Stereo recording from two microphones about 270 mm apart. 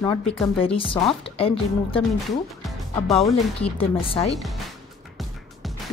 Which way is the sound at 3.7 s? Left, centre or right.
Left.